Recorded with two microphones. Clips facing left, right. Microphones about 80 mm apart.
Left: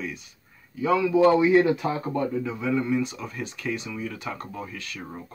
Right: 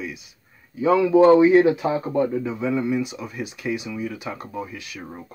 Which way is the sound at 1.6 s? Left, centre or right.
Centre.